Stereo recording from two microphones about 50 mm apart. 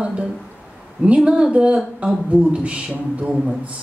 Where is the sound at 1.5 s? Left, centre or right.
Right.